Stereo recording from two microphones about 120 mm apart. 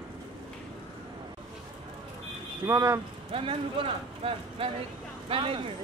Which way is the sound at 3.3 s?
50° right (ahead or behind).